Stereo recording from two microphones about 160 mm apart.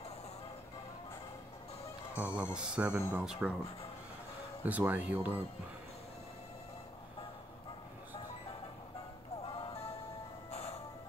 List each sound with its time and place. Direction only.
2.1 s speech: 10° right (ahead or behind)
4.6 s speech: 10° right (ahead or behind)
10.5 s music: 40° left (ahead or behind)